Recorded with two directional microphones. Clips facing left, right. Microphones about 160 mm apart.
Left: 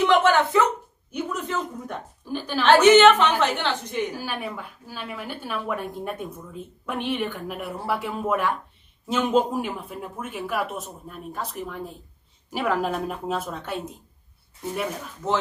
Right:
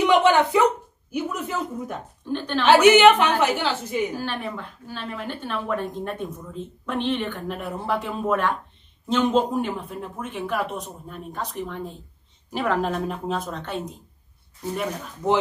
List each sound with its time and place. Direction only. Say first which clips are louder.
0.0 s a sound: right 1 dB; 15° right (ahead or behind)
2.2 s a woman's voice: right 3 dB; 5° left (ahead or behind)
2.6 s a woman's voice: even; 10° right (ahead or behind)
4.2 s a woman's voice: right 2 dB; 5° left (ahead or behind)
15.2 s a woman's voice: right 4 dB; 15° right (ahead or behind)